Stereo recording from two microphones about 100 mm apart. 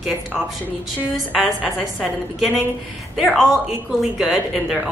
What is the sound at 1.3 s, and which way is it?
A woman's voice, 5° right (ahead or behind).